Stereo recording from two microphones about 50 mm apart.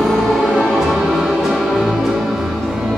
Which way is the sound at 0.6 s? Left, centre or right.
Centre.